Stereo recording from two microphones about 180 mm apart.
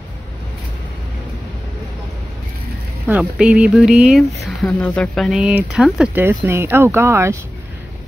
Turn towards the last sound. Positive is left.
turn(degrees=-15)  # may be behind; listen again after turning